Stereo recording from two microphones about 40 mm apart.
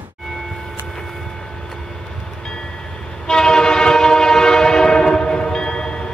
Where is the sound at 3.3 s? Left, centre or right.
Centre.